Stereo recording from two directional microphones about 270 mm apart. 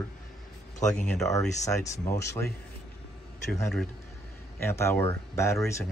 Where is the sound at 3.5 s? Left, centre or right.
Centre.